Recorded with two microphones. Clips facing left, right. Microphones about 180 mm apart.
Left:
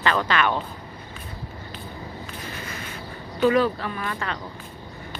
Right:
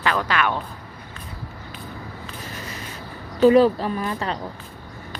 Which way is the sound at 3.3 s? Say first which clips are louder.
Right 6 dB; 35° right (ahead or behind).